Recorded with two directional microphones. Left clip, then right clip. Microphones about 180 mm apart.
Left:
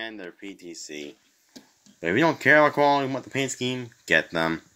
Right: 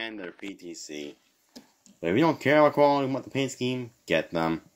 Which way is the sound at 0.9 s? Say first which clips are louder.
Left 1 dB; 20° right (ahead or behind).